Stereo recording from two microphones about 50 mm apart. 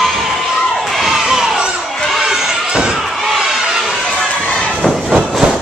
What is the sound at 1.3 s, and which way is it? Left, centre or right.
Crowd, centre.